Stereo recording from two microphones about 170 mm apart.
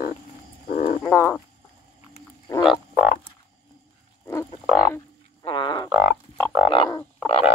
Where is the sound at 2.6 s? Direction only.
5° right (ahead or behind).